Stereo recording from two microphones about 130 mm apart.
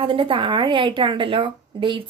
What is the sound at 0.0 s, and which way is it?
A woman's voice, 40° right (ahead or behind).